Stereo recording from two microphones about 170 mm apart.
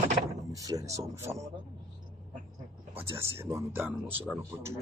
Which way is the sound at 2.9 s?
15° right (ahead or behind).